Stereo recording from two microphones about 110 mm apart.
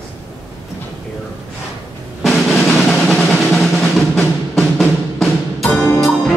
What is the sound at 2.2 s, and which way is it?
Drum, centre (ahead or behind).